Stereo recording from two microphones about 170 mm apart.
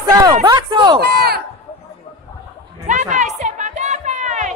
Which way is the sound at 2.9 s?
45° right (ahead or behind).